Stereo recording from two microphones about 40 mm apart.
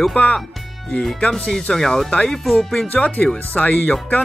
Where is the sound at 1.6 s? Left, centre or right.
Left.